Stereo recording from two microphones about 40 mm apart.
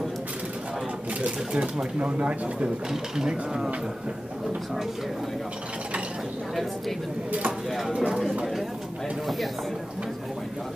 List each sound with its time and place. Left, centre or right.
1.2 s speech: right
2.9 s mechanisms: centre
7.7 s speech: centre